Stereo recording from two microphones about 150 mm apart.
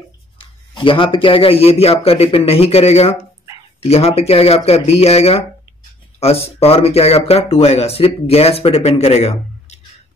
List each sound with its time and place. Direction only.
0.4 s a man's voice: 35° left (ahead or behind)